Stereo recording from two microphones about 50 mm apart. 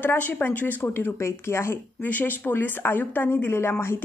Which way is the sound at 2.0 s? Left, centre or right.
Left.